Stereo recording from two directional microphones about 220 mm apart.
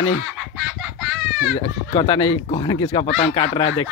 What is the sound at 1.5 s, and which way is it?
Speech, 25° left (ahead or behind).